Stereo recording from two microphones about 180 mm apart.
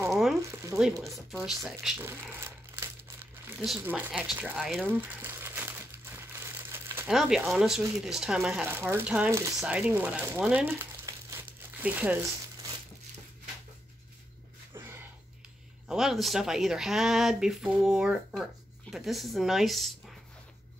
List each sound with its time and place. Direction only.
0.1 s frying: centre (ahead or behind)
0.4 s a sound: 15° right (ahead or behind)
1.1 s speech: centre (ahead or behind)
3.6 s speech: 5° right (ahead or behind)
5.2 s crumpling: 10° right (ahead or behind)
7.4 s speech: 5° right (ahead or behind)
15.9 s speech: centre (ahead or behind)